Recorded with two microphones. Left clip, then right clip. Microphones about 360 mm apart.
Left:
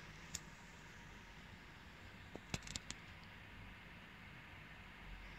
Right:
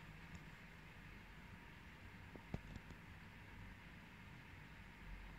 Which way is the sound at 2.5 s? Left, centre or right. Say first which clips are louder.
Left 11 dB; left.